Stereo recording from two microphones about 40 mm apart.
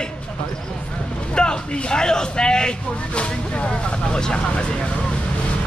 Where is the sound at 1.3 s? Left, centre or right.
Left.